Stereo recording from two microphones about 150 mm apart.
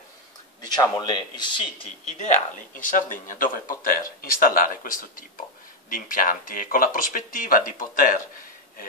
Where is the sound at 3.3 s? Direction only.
65° left (ahead or behind).